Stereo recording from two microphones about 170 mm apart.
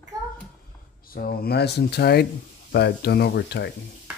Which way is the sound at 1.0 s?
60° left (ahead or behind).